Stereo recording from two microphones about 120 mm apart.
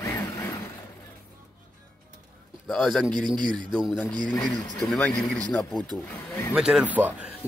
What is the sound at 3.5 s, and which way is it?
Speech, centre (ahead or behind).